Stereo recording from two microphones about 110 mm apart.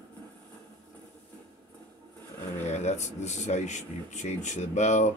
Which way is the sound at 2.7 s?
90° left.